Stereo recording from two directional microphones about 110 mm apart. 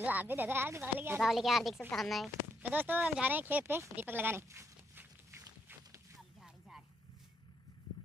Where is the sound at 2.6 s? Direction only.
15° right (ahead or behind).